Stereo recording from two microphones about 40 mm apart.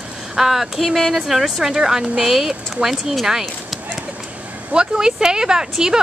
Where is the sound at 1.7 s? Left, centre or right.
Centre.